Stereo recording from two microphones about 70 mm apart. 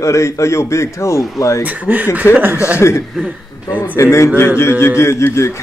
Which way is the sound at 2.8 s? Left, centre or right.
Left.